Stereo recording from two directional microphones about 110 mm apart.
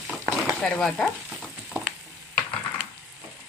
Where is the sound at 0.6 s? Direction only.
10° left (ahead or behind).